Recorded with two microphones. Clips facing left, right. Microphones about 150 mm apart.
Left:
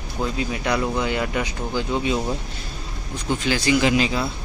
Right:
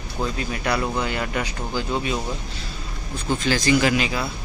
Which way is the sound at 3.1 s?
15° left (ahead or behind).